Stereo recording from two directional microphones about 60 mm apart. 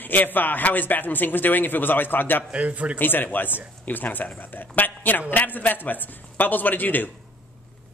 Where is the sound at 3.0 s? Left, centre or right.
Left.